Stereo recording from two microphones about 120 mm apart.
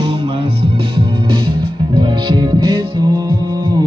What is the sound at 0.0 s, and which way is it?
Music, 45° right (ahead or behind).